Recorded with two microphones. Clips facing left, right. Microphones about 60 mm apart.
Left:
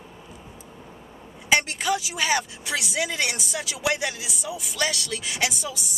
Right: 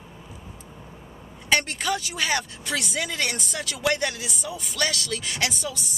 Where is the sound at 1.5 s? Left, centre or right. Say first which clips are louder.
Left 1 dB; centre.